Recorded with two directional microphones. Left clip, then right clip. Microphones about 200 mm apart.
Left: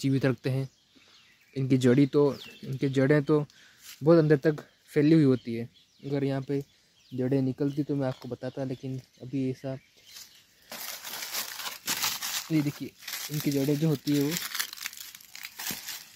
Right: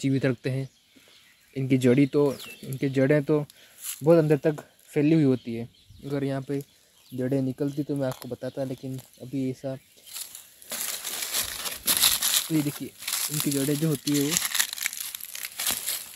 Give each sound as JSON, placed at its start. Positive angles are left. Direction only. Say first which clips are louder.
{"t": 0.0, "sound": "speech", "louder": "right 2 dB", "side_deg": 5}
{"t": 10.7, "sound": "crumpling", "louder": "right 5 dB", "side_deg": -30}
{"t": 13.0, "sound": "crumpling", "louder": "right 4 dB", "side_deg": -25}
{"t": 13.6, "sound": "speech", "louder": "even", "side_deg": 5}
{"t": 14.3, "sound": "crumpling", "louder": "right 6 dB", "side_deg": -30}